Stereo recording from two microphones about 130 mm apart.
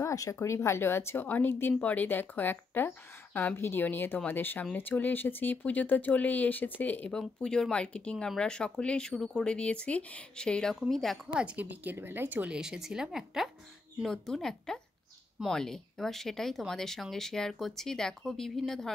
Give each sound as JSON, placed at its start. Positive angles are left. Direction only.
{"t": 0.0, "sound": "speech", "side_deg": 25}
{"t": 11.4, "sound": "speech", "side_deg": -10}